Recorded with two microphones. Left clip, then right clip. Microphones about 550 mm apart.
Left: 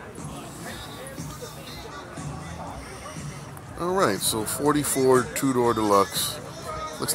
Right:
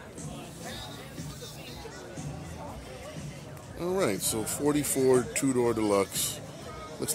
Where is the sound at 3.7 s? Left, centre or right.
Right.